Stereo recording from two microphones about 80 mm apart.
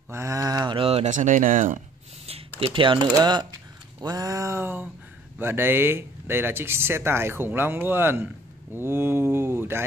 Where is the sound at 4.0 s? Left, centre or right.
Right.